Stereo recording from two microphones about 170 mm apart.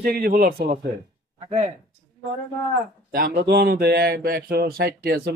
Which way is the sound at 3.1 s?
60° right (ahead or behind).